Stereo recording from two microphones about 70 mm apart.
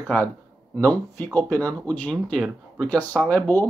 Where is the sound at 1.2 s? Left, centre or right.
Left.